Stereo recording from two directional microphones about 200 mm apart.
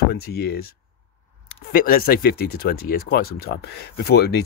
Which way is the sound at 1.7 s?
45° left (ahead or behind).